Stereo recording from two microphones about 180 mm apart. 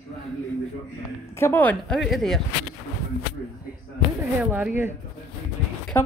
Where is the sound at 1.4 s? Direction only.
10° left (ahead or behind).